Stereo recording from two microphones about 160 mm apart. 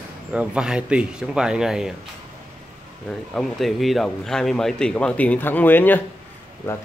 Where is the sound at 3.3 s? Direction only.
Centre (ahead or behind).